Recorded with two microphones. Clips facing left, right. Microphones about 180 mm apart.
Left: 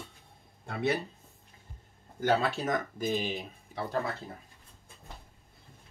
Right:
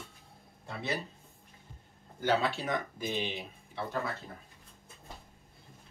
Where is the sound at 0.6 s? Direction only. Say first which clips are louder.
Left 6 dB; 60° left (ahead or behind).